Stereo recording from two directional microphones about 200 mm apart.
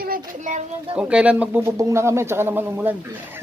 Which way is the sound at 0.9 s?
5° right (ahead or behind).